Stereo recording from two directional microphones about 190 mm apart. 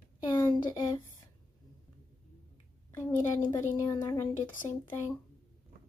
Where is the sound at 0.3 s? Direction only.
25° left (ahead or behind).